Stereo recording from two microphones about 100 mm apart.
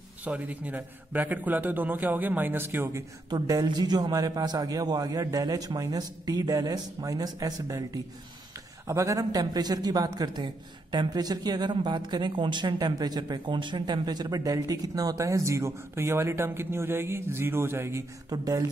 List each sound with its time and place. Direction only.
0.2 s a man's voice: 15° right (ahead or behind)
3.3 s speech: 40° right (ahead or behind)
18.3 s speech: 35° right (ahead or behind)